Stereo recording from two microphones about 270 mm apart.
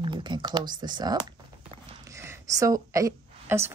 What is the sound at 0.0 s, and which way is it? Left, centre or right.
Speech, centre.